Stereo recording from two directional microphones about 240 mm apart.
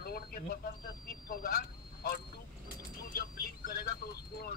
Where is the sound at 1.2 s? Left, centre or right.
Left.